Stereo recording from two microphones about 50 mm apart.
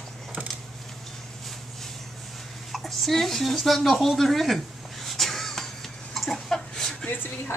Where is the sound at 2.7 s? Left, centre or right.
Centre.